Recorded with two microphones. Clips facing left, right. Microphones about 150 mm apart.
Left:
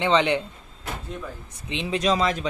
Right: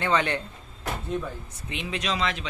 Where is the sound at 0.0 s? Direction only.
20° left (ahead or behind).